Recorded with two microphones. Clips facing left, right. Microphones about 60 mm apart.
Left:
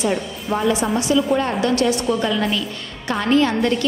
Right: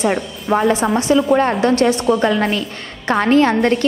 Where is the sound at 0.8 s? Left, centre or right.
Right.